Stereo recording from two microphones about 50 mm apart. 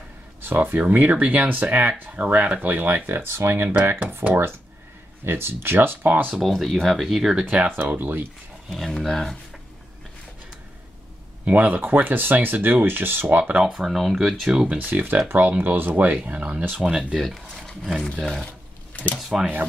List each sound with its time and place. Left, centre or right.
0.7 s speech: right
3.3 s speech: right
3.6 s speech: right
6.3 s speech: centre
7.4 s speech: right
8.6 s speech: centre
11.4 s speech: right
13.4 s speech: right
13.7 s speech: centre
14.8 s speech: right; by 17.1 s centre
17.1 s speech: centre
17.6 s a sound: centre
18.2 s speech: centre